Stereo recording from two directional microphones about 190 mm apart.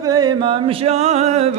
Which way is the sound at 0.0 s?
20° right (ahead or behind).